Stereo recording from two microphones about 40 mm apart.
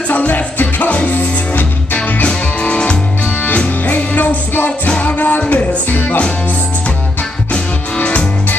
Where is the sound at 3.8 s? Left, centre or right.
Left.